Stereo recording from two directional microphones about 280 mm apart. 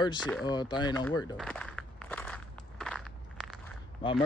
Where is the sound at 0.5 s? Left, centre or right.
Centre.